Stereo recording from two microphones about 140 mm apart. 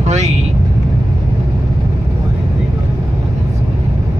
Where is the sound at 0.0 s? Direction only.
50° right (ahead or behind).